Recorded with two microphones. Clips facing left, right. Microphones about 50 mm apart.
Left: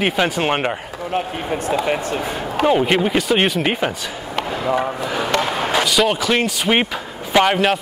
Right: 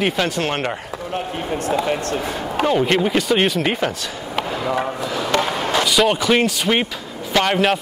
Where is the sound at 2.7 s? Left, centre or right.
Centre.